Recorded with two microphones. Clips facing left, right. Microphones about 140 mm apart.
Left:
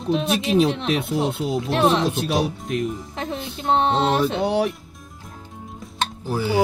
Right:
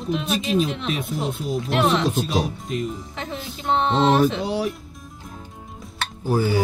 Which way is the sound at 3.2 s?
35° left (ahead or behind).